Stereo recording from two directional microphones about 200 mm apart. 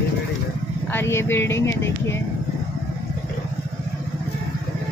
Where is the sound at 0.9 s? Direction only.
10° left (ahead or behind).